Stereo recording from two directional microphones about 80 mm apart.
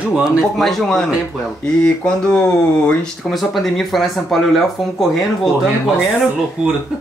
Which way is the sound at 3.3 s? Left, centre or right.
Centre.